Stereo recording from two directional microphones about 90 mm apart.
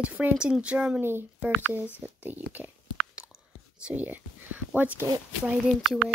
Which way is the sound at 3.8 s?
20° right (ahead or behind).